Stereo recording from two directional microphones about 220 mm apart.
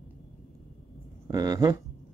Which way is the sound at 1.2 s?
15° right (ahead or behind).